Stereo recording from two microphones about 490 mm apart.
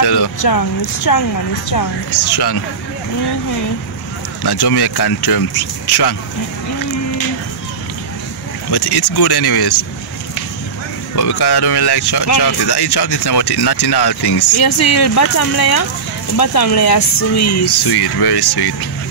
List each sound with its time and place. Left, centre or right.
0.0 s speech: left
4.4 s speech: left
8.6 s speech: left
11.1 s speech: left
14.6 s speech: left
17.6 s speech: left